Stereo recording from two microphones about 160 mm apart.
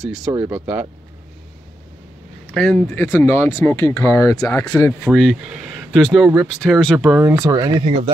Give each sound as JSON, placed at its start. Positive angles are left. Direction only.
{"t": 0.0, "sound": "speech", "side_deg": -5}
{"t": 2.4, "sound": "speech", "side_deg": 5}
{"t": 5.1, "sound": "speech", "side_deg": 0}
{"t": 7.2, "sound": "speech", "side_deg": -15}